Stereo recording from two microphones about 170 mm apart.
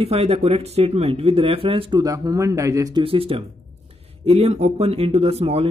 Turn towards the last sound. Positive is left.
turn(degrees=-35)  # may be behind; listen again after turning